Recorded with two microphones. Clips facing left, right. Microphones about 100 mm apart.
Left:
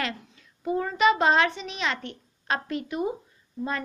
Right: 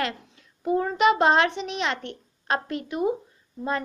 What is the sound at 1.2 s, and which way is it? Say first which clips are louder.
A child's voice: right 2 dB; 50° right (ahead or behind).